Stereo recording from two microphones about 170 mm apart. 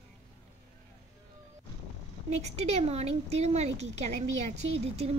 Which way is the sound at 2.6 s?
40° right (ahead or behind).